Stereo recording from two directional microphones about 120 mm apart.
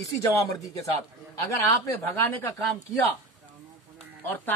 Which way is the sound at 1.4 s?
20° left (ahead or behind).